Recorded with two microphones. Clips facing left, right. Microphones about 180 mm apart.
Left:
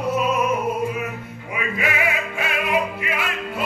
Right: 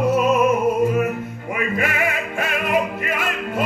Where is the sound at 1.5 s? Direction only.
50° right (ahead or behind).